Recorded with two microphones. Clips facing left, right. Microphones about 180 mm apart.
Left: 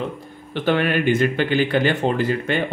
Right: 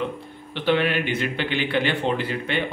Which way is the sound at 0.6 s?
45° left (ahead or behind).